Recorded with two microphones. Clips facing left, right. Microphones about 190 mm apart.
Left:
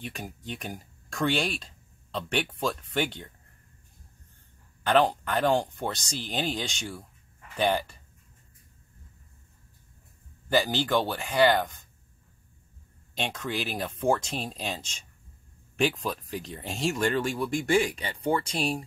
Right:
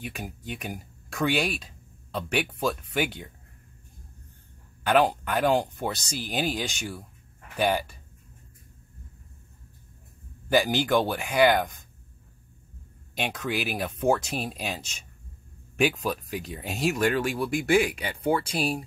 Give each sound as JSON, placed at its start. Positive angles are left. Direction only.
{"t": 0.0, "sound": "speech", "side_deg": -5}
{"t": 4.8, "sound": "speech", "side_deg": -10}
{"t": 10.5, "sound": "speech", "side_deg": -15}
{"t": 13.1, "sound": "speech", "side_deg": -10}